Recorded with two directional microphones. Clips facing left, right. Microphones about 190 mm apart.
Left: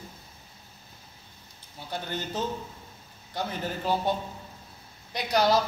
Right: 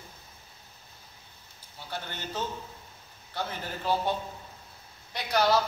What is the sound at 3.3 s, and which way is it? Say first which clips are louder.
Speech: left 3 dB; 15° left (ahead or behind).